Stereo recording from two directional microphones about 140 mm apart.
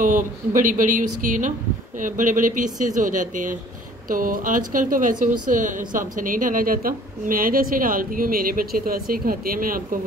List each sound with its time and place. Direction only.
0.0 s speech: 70° right (ahead or behind)
4.1 s a woman's voice: 80° right